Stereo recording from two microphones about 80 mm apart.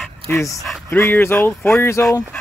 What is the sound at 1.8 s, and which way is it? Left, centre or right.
Speech, left.